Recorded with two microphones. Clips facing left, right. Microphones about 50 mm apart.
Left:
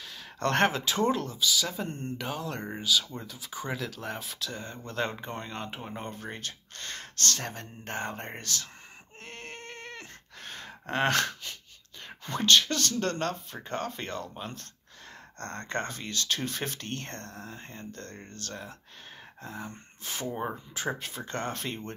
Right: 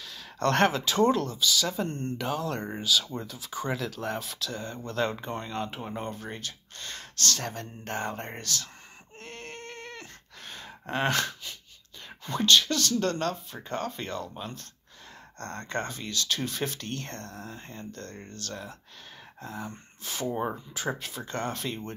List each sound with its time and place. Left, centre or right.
0.0 s speech: left; by 4.2 s centre
4.2 s speech: centre
9.2 s a sound: left
10.4 s gasp: left
12.3 s speech: left
19.4 s speech: centre
20.0 s speech: left